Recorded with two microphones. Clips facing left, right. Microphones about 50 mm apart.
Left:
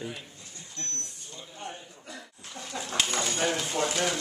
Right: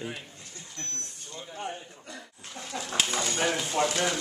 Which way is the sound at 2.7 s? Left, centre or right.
Centre.